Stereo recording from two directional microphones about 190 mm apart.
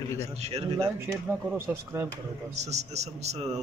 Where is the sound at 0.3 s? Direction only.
35° right (ahead or behind).